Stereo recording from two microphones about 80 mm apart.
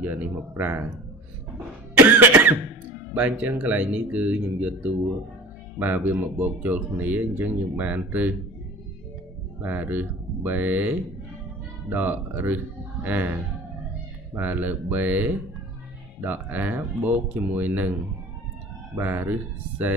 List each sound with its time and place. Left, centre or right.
0.0 s speech: centre
2.0 s cough: right
3.2 s speech: centre
9.6 s speech: right
14.3 s speech: right
18.9 s speech: right